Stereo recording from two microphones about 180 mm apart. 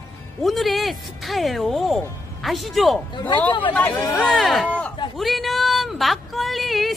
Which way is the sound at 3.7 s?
15° left (ahead or behind).